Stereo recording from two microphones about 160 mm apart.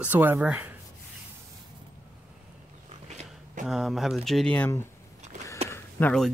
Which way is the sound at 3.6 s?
Centre (ahead or behind).